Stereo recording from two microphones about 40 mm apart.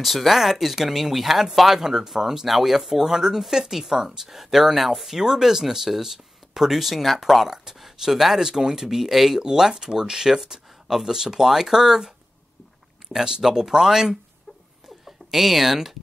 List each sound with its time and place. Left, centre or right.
0.0 s speech: centre
13.2 s speech: centre
15.0 s speech: centre